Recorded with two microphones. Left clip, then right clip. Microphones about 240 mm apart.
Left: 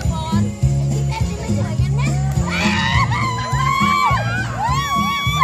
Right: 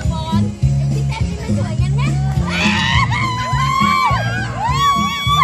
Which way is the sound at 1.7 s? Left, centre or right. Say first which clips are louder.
Right 1 dB; centre.